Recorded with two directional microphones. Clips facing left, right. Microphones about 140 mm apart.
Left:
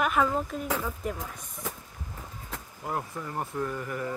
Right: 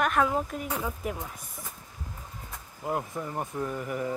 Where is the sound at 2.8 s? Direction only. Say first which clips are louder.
Right 3 dB; 20° right (ahead or behind).